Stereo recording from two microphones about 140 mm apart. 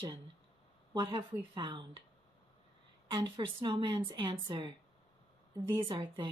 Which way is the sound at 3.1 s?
35° right (ahead or behind).